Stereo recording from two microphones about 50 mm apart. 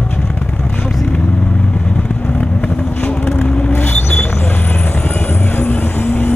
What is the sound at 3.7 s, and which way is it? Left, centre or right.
Vehicle, left.